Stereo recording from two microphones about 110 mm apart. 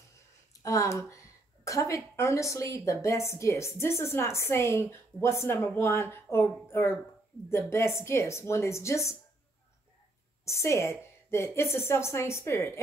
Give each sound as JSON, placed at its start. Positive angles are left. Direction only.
{"t": 0.5, "sound": "a sound", "side_deg": 30}
{"t": 2.1, "sound": "a woman's voice", "side_deg": 25}
{"t": 10.4, "sound": "a woman's voice", "side_deg": 25}